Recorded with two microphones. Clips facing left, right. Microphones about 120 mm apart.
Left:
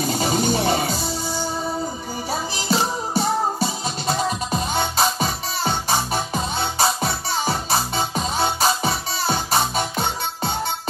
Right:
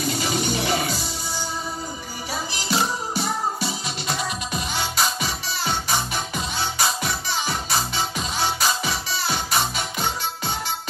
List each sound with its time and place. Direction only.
0.0 s music: 35° left (ahead or behind)
2.7 s music: 30° left (ahead or behind)